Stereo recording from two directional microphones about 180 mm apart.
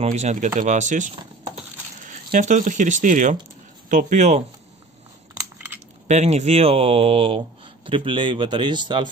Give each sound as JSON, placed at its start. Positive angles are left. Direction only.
{"t": 0.0, "sound": "speech", "side_deg": -40}
{"t": 6.0, "sound": "speech", "side_deg": -40}